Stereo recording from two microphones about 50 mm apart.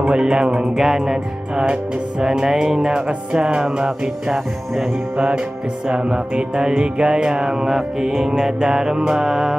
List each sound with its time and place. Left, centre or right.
0.0 s music: centre
4.3 s music: centre
5.9 s music: centre